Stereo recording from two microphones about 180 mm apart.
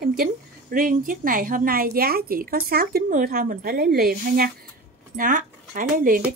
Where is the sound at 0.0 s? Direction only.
55° right (ahead or behind).